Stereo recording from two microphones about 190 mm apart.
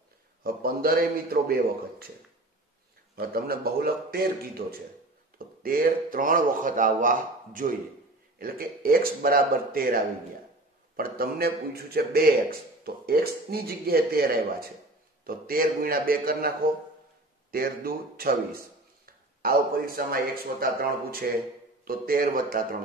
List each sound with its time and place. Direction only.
0.4 s a man's voice: 50° right (ahead or behind)
3.2 s a man's voice: 50° right (ahead or behind)